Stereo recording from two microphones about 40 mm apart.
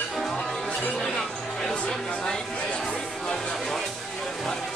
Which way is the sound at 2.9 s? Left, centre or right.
Centre.